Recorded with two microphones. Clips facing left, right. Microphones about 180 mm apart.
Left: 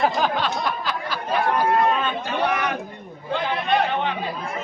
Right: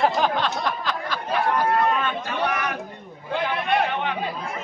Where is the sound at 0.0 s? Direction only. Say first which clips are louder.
Even; 5° left (ahead or behind).